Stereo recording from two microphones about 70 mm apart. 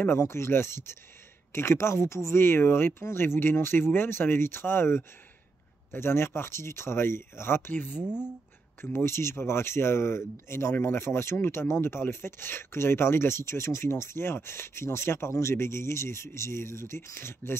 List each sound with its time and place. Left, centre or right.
0.1 s speech: left
8.9 s speech: left